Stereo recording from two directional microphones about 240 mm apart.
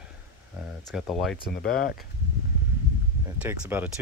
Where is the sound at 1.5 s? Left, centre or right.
Left.